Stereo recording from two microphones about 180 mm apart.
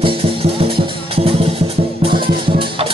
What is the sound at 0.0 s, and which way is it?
Music, 30° right (ahead or behind).